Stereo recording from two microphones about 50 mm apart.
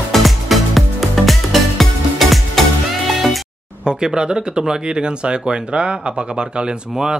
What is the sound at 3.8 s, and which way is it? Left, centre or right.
Speech, centre.